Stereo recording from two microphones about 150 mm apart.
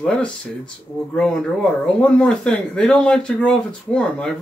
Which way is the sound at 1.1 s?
5° left (ahead or behind).